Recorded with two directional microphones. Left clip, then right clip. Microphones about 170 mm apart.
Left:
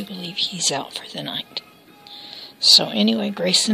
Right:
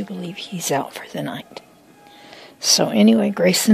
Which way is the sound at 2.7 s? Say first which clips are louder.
Even; 40° right (ahead or behind).